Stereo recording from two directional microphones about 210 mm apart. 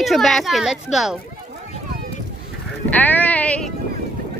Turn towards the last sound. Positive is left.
turn(degrees=5)  # may be behind; listen again after turning